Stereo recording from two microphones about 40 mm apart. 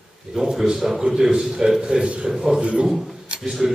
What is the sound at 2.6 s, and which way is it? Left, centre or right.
Speech, right.